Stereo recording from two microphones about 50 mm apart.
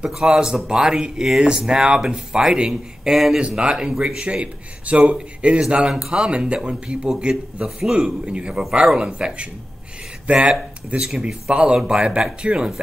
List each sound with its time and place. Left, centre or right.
0.1 s speech: centre
3.3 s a man's voice: centre
11.0 s speech: centre
11.5 s a man's voice: right